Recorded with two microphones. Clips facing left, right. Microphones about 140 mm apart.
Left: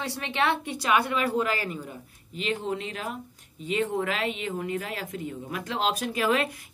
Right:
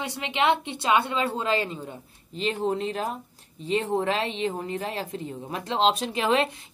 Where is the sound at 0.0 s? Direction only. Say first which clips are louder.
Right 2 dB; 20° right (ahead or behind).